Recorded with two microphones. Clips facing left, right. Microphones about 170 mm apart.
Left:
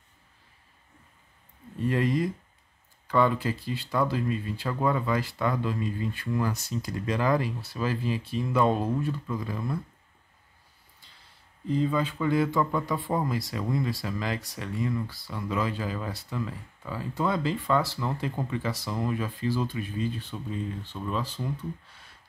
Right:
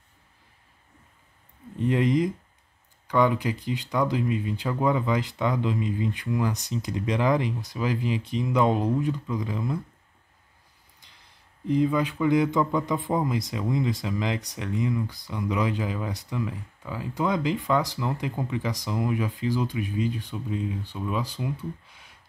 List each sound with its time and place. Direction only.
1.8 s a man's voice: 20° right (ahead or behind)
11.6 s a man's voice: 15° right (ahead or behind)